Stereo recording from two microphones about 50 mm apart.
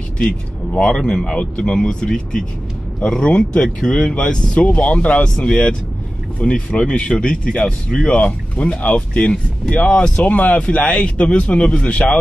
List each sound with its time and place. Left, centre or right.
0.7 s speech: centre
8.2 s speech: left
10.6 s speech: centre